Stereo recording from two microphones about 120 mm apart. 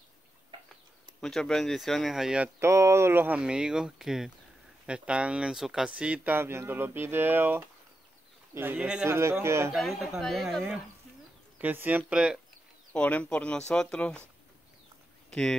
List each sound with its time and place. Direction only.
1.2 s speech: 5° left (ahead or behind)
2.6 s speech: 25° right (ahead or behind)
3.3 s speech: 5° right (ahead or behind)
9.0 s speech: 20° right (ahead or behind)
9.7 s speech: centre (ahead or behind)
11.5 s speech: 15° right (ahead or behind)
12.9 s speech: 10° left (ahead or behind)
15.2 s a sound: 10° left (ahead or behind)